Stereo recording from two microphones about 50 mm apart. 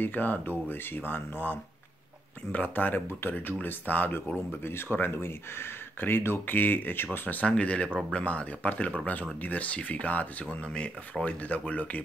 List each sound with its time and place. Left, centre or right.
0.0 s speech: left
4.5 s speech: left
7.4 s speech: left